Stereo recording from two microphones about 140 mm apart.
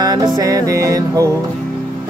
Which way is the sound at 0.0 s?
30° right (ahead or behind).